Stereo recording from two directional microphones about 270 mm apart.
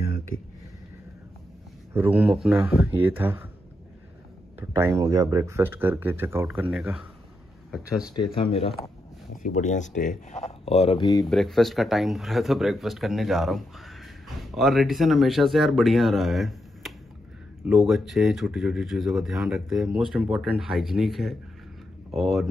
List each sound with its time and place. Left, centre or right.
2.0 s speech: centre
4.6 s speech: centre
8.0 s speech: centre
11.2 s speech: centre